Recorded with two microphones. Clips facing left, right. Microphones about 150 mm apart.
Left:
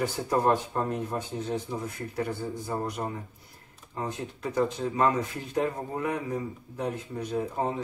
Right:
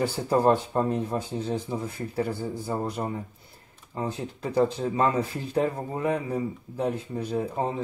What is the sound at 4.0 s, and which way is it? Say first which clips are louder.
A man's voice: right 2 dB; 30° right (ahead or behind).